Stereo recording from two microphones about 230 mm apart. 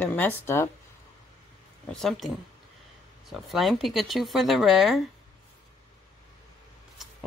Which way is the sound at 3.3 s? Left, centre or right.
Centre.